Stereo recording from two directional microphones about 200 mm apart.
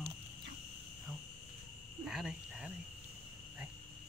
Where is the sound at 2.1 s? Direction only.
5° right (ahead or behind).